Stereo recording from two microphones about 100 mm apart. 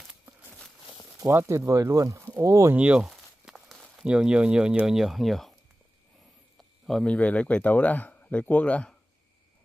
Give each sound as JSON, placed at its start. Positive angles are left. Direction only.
{"t": 1.2, "sound": "speech", "side_deg": -30}
{"t": 2.7, "sound": "speech", "side_deg": -15}
{"t": 3.1, "sound": "a sound", "side_deg": 0}
{"t": 4.0, "sound": "speech", "side_deg": -10}
{"t": 6.9, "sound": "speech", "side_deg": 5}
{"t": 7.2, "sound": "speech", "side_deg": 15}